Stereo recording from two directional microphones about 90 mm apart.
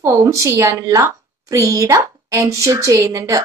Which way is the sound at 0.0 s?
35° right (ahead or behind).